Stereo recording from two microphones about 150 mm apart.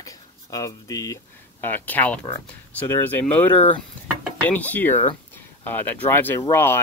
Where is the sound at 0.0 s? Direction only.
25° left (ahead or behind).